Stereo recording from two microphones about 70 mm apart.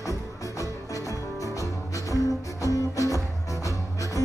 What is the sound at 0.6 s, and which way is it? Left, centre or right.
Music, left.